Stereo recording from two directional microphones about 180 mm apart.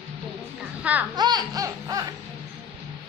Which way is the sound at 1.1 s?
20° right (ahead or behind).